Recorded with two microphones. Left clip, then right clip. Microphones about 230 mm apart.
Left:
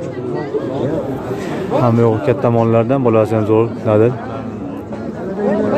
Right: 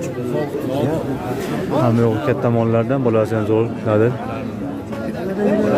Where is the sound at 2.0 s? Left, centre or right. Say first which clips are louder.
Left 4 dB; centre.